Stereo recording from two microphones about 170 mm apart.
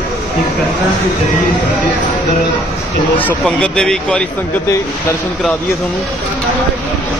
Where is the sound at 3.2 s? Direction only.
5° left (ahead or behind).